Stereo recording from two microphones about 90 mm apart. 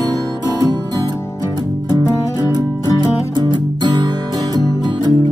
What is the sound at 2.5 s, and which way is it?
Music, 55° right (ahead or behind).